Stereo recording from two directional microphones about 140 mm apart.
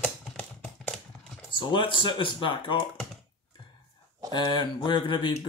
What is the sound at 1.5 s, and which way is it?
Speech, 35° left (ahead or behind).